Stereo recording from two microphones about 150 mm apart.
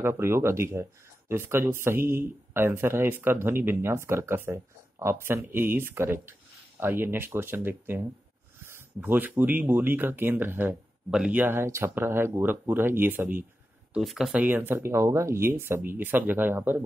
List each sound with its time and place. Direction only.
0.0 s a man's voice: 15° right (ahead or behind)
13.9 s a man's voice: 5° right (ahead or behind)